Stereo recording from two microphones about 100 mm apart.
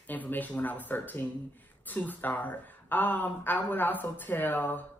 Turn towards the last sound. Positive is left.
turn(degrees=20)  # may be behind; listen again after turning